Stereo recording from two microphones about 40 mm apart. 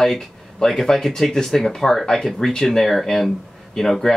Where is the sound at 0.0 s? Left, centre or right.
Centre.